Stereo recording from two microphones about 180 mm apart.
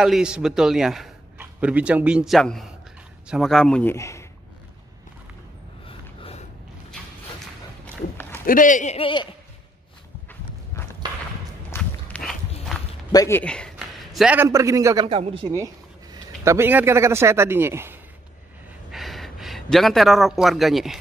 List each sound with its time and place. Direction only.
0.0 s a man's voice: 5° right (ahead or behind)
3.9 s speech: 15° left (ahead or behind)
5.9 s a sound: 35° left (ahead or behind)
7.8 s a sound: 10° left (ahead or behind)
8.5 s a man's voice: 45° left (ahead or behind); by 9.3 s 25° left (ahead or behind)
11.0 s walk: 25° right (ahead or behind)
11.7 s walk: 5° left (ahead or behind)
13.1 s speech: 20° left (ahead or behind)
13.4 s a man's voice: 5° left (ahead or behind); by 15.0 s 15° right (ahead or behind)
15.0 s speech: 30° right (ahead or behind)
15.5 s a man's voice: 15° right (ahead or behind)
18.9 s speech: centre (ahead or behind)